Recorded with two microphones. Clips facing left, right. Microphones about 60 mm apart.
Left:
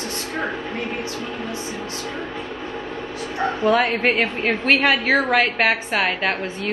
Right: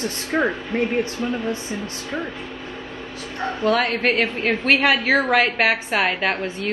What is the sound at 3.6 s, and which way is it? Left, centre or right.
A woman's voice, centre.